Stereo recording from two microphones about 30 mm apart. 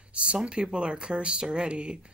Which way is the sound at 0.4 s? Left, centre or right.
Right.